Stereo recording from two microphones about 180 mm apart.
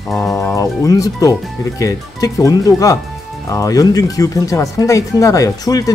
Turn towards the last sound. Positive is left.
turn(degrees=20)  # may be behind; listen again after turning